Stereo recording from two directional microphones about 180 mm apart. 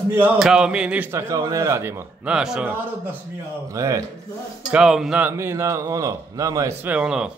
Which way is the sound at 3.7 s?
15° right (ahead or behind).